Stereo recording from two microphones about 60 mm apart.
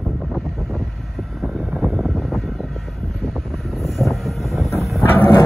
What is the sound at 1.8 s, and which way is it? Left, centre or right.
Vehicle, centre.